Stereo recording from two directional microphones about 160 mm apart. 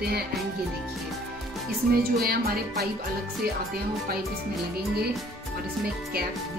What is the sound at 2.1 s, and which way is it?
Speech, 70° right (ahead or behind).